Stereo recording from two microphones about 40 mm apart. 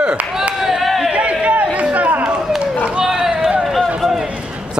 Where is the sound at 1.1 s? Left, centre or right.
Right.